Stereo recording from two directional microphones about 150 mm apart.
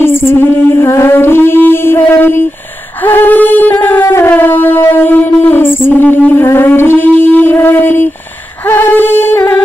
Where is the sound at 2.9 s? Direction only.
15° left (ahead or behind).